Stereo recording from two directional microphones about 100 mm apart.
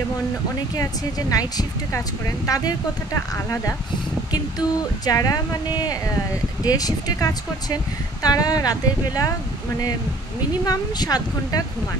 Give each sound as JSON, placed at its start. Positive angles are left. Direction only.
{"t": 1.3, "sound": "speech", "side_deg": 40}
{"t": 10.6, "sound": "speech", "side_deg": 40}